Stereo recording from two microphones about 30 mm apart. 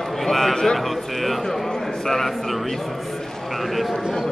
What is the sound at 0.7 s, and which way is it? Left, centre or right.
A man's voice, centre.